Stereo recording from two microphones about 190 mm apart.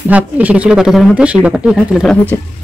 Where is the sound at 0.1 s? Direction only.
5° right (ahead or behind).